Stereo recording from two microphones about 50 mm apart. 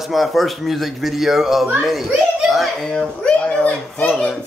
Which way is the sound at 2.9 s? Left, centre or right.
Centre.